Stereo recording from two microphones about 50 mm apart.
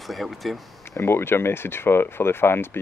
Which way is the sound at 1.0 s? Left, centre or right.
Left.